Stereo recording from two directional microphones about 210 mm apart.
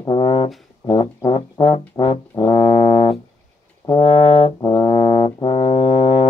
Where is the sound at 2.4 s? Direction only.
25° left (ahead or behind).